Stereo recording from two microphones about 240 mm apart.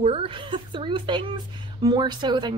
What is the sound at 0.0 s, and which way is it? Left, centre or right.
A woman's voice, right.